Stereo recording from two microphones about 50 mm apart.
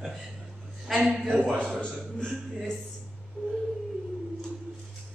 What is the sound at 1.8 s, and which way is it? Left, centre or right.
Speech, centre.